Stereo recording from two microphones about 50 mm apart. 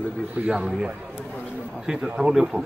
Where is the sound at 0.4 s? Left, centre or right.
Right.